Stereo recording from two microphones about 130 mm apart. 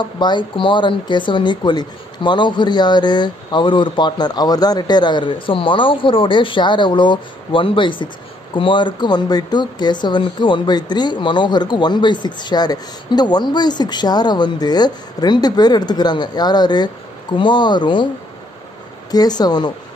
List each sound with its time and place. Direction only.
0.0 s speech: 35° left (ahead or behind)
19.0 s speech: 30° left (ahead or behind)